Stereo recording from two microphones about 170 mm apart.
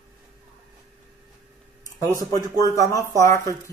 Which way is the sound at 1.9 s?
20° left (ahead or behind).